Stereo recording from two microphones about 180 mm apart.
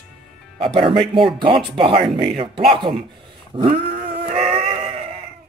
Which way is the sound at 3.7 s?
45° right (ahead or behind).